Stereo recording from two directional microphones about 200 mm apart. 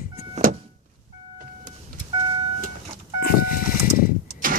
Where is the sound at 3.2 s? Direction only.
45° left (ahead or behind).